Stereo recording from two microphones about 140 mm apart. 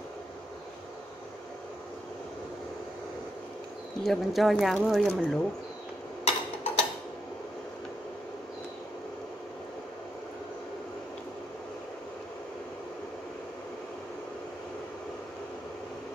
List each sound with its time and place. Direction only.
4.0 s speech: centre (ahead or behind)
6.2 s tick-tock: 45° left (ahead or behind)